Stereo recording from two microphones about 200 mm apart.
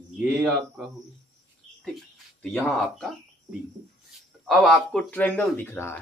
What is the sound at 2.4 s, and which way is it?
Speech, 5° left (ahead or behind).